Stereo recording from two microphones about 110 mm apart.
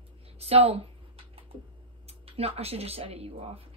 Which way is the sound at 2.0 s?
65° right (ahead or behind).